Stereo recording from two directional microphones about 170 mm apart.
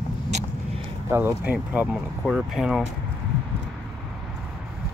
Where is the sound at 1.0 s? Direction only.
15° right (ahead or behind).